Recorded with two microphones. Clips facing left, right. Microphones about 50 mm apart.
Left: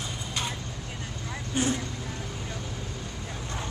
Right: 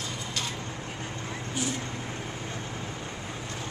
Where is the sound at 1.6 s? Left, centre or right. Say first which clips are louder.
Left 5 dB; left.